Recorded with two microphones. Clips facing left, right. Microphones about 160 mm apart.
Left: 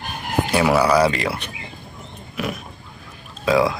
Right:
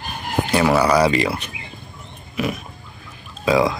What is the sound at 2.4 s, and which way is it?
Pig, centre (ahead or behind).